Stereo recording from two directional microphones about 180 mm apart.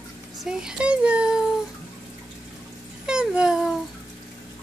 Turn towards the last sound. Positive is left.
turn(degrees=-5)  # may be behind; listen again after turning